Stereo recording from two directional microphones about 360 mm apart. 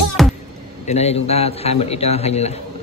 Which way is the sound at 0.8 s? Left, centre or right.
Centre.